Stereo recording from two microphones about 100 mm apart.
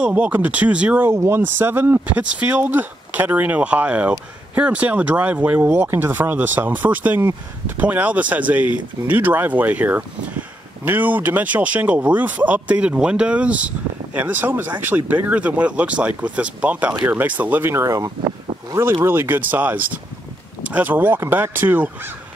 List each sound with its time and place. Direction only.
0.0 s speech: 15° right (ahead or behind)